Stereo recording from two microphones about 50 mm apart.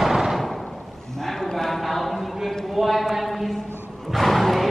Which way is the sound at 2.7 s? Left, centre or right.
Centre.